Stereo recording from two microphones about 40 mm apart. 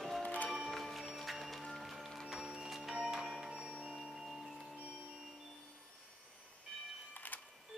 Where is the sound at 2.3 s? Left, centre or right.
Centre.